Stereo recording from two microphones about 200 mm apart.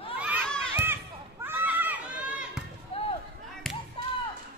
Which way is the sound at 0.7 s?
10° right (ahead or behind).